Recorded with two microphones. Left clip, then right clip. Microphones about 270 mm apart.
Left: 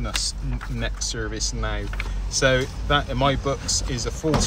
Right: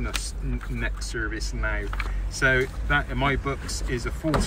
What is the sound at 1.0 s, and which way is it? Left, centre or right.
Speech, left.